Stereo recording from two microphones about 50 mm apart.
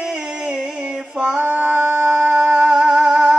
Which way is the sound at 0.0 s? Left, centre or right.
Centre.